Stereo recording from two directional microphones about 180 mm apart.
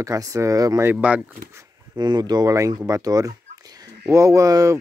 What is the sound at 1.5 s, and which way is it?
Speech, 20° right (ahead or behind).